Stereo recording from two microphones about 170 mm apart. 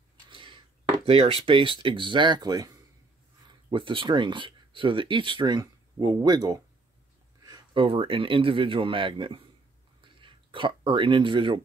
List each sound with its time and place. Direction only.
0.3 s speech: 30° right (ahead or behind)
3.7 s speech: 30° right (ahead or behind)